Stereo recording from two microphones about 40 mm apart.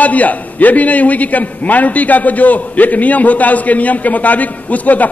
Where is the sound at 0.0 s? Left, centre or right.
Left.